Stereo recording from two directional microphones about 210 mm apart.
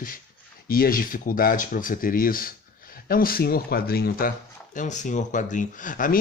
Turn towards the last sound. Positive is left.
turn(degrees=40)  # may be behind; listen again after turning